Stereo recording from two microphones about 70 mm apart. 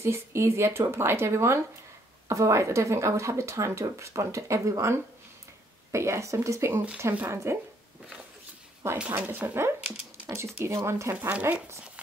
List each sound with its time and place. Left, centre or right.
0.0 s speech: right
8.9 s speech: right
9.8 s a sound: centre
10.3 s speech: right
11.1 s speech: right